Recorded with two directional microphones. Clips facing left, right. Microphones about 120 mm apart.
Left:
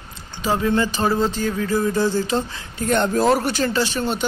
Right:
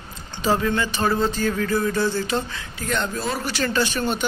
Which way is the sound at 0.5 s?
25° left (ahead or behind).